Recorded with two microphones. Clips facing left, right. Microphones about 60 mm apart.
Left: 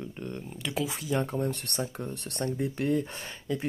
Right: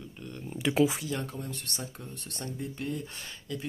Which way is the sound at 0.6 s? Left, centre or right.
Centre.